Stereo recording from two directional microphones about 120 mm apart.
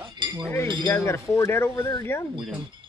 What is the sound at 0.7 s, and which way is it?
Speech, 25° left (ahead or behind).